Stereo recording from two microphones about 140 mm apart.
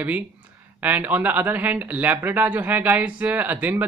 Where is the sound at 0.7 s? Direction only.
10° right (ahead or behind).